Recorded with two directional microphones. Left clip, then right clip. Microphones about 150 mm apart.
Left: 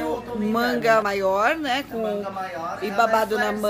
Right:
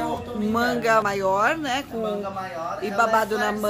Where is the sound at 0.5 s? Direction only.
5° left (ahead or behind).